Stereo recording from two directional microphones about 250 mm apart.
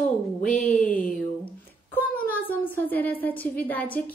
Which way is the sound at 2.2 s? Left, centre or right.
Centre.